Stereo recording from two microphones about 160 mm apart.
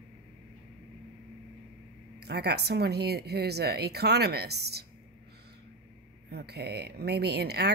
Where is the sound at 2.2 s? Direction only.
90° right.